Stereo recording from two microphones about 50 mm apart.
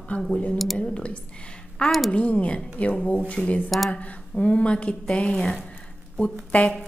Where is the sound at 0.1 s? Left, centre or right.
Left.